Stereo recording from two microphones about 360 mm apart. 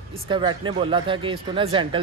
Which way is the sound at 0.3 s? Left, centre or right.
Centre.